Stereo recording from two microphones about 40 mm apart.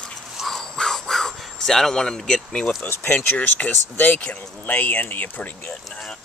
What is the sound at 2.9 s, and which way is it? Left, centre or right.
Speech, left.